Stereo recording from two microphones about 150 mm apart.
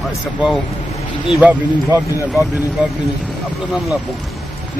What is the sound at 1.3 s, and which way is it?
Speech, 10° right (ahead or behind).